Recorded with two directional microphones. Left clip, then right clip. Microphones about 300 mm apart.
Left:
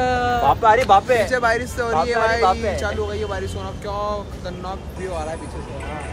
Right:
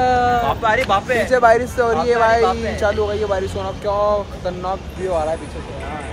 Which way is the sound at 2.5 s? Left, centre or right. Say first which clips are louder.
Left 1 dB; centre.